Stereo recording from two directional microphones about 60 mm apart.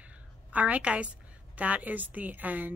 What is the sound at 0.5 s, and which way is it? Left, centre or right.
Speech, right.